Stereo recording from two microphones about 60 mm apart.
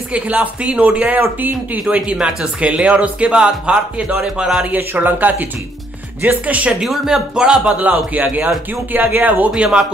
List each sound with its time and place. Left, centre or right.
0.1 s speech: right
2.0 s speech: centre
4.6 s speech: right
6.8 s speech: centre
7.8 s speech: right
9.6 s speech: centre